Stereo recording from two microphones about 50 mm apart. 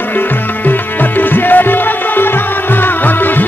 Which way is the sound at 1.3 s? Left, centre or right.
Left.